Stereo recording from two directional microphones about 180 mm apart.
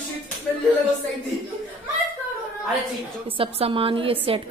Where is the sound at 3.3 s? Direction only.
30° right (ahead or behind).